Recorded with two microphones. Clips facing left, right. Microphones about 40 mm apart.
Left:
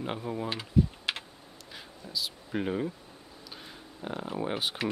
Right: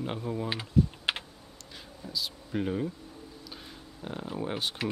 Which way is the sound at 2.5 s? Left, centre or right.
Centre.